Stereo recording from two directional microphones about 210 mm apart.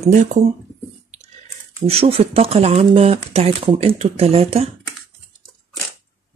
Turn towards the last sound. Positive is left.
turn(degrees=-30)  # may be behind; listen again after turning